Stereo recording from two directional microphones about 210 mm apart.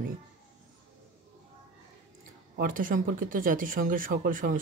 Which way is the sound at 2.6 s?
40° right (ahead or behind).